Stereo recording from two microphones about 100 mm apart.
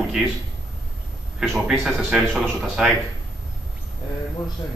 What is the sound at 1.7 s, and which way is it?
Speech, 5° right (ahead or behind).